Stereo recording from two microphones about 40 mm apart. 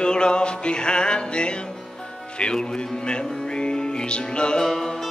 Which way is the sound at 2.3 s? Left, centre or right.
Left.